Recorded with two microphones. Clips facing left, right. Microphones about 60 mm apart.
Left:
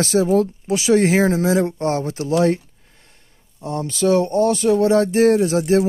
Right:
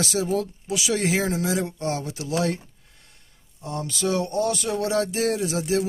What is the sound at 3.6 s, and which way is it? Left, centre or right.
Speech, left.